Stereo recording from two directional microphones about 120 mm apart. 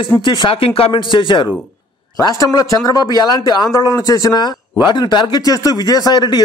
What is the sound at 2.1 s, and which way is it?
Speech, 30° left (ahead or behind).